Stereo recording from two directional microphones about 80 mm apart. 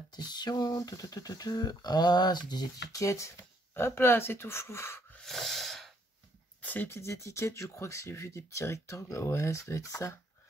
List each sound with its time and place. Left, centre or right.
0.1 s speech: left
5.2 s wheeze: centre
6.6 s a sound: left
7.0 s speech: left